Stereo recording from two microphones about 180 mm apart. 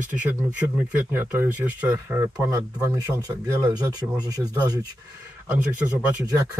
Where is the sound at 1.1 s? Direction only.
10° right (ahead or behind).